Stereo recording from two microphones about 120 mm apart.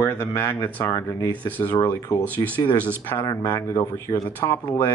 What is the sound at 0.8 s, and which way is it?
Speech, 30° left (ahead or behind).